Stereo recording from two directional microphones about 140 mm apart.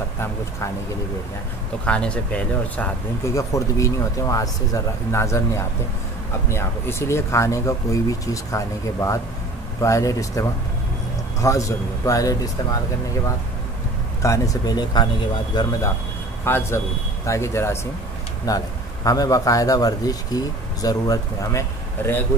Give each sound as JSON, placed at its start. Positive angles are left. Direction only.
{"t": 1.9, "sound": "speech", "side_deg": 10}
{"t": 3.3, "sound": "a man's voice", "side_deg": 25}
{"t": 14.2, "sound": "a man's voice", "side_deg": 25}
{"t": 16.4, "sound": "speech", "side_deg": 15}